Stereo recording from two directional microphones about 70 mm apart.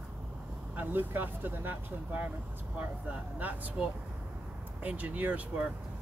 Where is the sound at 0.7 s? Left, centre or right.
Right.